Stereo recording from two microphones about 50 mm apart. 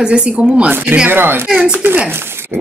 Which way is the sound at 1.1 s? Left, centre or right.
Right.